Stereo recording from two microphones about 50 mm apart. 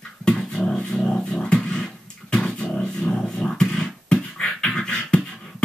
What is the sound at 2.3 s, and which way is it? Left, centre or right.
Dog, centre.